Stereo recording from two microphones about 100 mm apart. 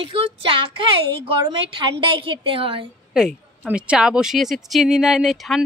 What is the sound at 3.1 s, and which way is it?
A woman's voice, 10° right (ahead or behind).